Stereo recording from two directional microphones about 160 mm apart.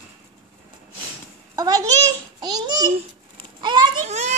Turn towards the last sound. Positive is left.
turn(degrees=-45)  # may be behind; listen again after turning